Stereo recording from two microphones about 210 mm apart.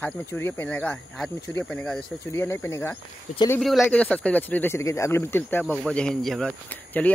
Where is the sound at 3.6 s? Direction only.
Centre (ahead or behind).